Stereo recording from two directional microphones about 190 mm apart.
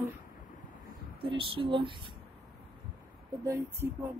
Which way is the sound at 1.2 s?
30° right (ahead or behind).